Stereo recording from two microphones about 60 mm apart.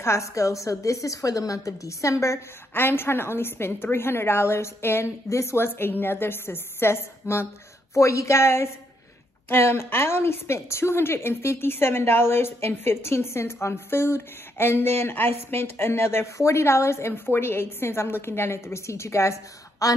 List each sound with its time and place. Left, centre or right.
0.0 s a woman's voice: left
2.7 s a woman's voice: left
7.9 s a woman's voice: left